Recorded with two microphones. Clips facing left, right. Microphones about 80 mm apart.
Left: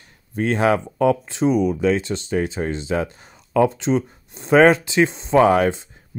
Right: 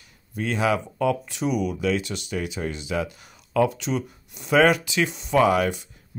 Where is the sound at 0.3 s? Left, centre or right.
Left.